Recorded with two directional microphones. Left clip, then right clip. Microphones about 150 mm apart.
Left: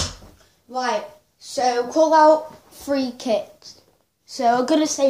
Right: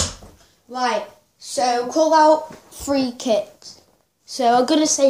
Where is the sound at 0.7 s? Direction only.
25° left (ahead or behind).